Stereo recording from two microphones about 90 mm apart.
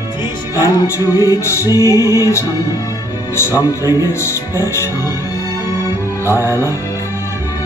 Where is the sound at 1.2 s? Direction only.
35° left (ahead or behind).